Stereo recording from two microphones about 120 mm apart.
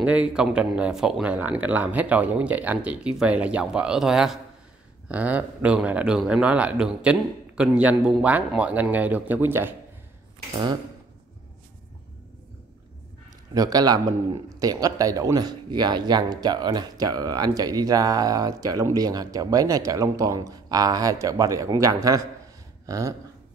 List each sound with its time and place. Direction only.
0.0 s speech: 10° right (ahead or behind)
13.5 s a man's voice: 30° right (ahead or behind)